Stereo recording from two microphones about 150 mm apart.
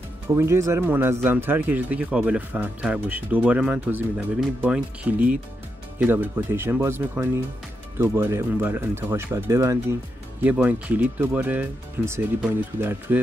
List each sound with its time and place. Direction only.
0.4 s speech: 20° right (ahead or behind)